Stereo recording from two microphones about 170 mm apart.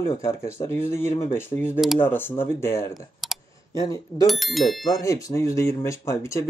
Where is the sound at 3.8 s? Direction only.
20° left (ahead or behind).